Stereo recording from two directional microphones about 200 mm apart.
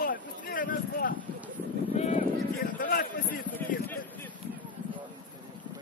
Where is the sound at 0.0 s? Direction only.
45° left (ahead or behind).